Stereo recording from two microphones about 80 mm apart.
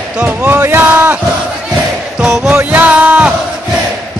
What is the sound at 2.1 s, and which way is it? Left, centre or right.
Music, centre.